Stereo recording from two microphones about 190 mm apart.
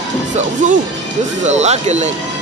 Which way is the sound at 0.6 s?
40° right (ahead or behind).